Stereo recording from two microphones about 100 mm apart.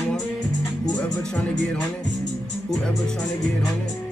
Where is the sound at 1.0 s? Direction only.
10° left (ahead or behind).